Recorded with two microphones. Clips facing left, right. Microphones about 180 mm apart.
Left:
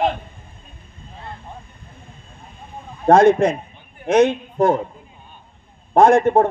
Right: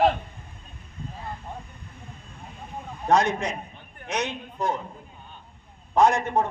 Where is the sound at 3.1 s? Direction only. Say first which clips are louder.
Left 10 dB; 55° left (ahead or behind).